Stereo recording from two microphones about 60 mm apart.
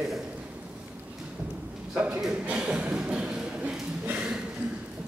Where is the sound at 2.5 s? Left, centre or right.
Centre.